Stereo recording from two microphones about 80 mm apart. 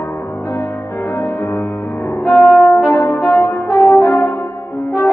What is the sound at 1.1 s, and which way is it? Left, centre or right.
Music, left.